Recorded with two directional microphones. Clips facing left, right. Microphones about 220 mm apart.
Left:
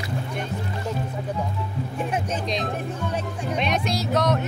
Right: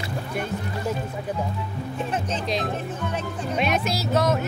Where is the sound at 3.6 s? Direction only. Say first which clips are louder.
Right 1 dB; 5° right (ahead or behind).